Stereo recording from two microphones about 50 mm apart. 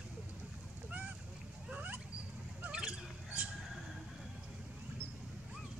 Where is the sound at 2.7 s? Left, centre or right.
Centre.